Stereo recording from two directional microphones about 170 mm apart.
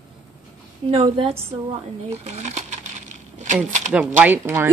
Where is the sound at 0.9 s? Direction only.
35° right (ahead or behind).